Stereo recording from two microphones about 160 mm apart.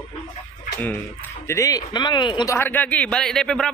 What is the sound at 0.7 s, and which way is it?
Speech, 10° left (ahead or behind).